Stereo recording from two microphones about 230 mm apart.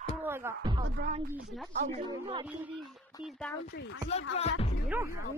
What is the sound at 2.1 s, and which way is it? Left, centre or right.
Speech, right.